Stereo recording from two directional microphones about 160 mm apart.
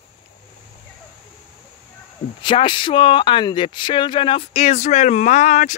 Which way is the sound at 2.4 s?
30° left (ahead or behind).